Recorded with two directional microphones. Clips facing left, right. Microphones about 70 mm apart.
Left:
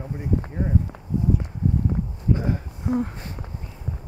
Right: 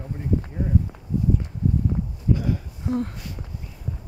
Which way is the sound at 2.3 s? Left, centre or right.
Left.